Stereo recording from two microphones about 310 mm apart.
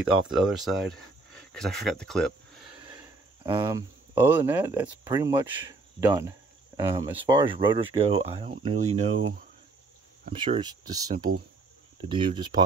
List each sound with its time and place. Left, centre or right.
0.0 s speech: centre
2.8 s speech: centre
10.3 s speech: centre